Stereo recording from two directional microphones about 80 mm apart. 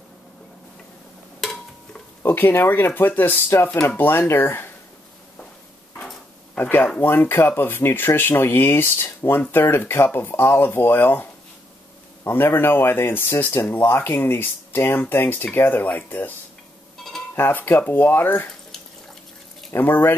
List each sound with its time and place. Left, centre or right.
2.2 s speech: left
6.5 s speech: centre
12.3 s speech: left
17.4 s speech: left
19.7 s speech: left